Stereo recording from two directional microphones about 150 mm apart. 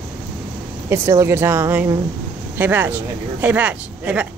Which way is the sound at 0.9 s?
15° right (ahead or behind).